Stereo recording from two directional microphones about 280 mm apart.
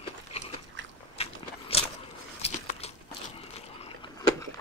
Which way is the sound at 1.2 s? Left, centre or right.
Left.